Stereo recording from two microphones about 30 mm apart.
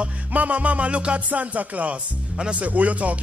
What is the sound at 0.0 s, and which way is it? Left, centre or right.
Music, right.